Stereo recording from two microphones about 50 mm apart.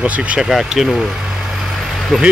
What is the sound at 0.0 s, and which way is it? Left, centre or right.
Speech, right.